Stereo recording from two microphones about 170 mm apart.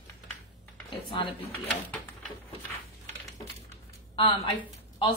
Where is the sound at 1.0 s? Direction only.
30° left (ahead or behind).